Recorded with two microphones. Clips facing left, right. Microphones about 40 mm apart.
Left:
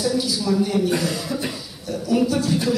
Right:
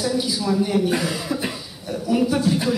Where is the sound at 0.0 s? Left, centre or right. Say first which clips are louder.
Left 1 dB; centre.